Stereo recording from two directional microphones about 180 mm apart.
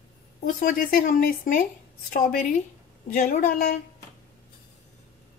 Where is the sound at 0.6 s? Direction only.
50° left (ahead or behind).